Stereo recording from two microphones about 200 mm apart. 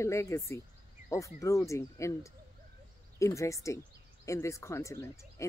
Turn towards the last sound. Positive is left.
turn(degrees=15)  # may be behind; listen again after turning